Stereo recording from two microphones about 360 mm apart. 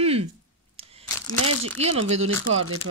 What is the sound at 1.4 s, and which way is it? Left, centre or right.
Speech, right.